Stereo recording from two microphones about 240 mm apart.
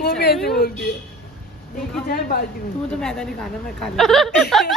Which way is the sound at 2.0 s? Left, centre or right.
Left.